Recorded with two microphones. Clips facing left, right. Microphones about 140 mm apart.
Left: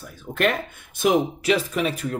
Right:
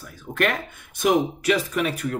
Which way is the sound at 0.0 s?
25° left (ahead or behind).